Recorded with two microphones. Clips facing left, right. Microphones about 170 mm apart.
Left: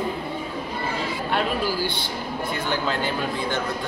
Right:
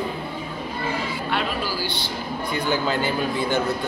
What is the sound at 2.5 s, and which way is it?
Music, 5° right (ahead or behind).